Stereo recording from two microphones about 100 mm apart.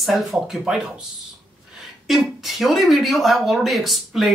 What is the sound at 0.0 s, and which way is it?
Speech, 5° right (ahead or behind).